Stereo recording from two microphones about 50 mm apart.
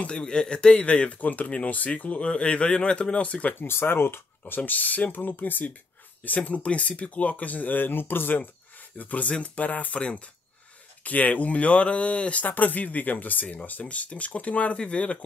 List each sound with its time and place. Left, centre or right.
0.2 s a man's voice: centre
3.5 s speech: left
4.6 s a man's voice: left